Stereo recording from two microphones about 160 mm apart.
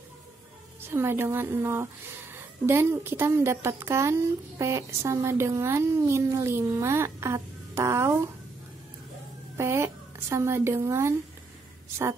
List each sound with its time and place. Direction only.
0.7 s speech: 15° right (ahead or behind)
9.6 s speech: 15° right (ahead or behind)